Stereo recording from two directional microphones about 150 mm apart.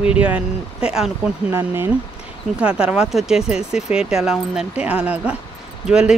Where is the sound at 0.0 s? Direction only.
10° right (ahead or behind).